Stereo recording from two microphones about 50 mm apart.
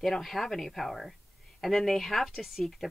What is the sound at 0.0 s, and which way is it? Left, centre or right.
Speech, centre.